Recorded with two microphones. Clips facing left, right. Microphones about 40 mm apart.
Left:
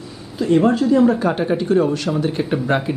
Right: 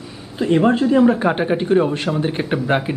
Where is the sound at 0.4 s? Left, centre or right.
Right.